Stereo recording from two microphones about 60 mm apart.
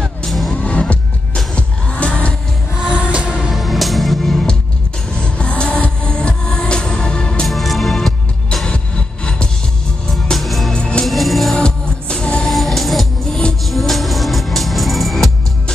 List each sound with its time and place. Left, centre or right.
0.0 s music: centre
0.5 s music: left
2.9 s music: right
3.5 s music: centre
5.2 s music: centre
7.4 s music: centre
8.6 s music: centre
10.3 s music: centre
10.7 s music: centre
11.1 s music: centre
11.5 s music: centre
12.4 s music: centre